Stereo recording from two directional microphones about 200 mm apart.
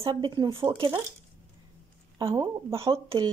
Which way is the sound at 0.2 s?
20° right (ahead or behind).